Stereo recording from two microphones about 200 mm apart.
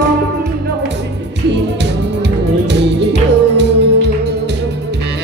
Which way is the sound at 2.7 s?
60° right (ahead or behind).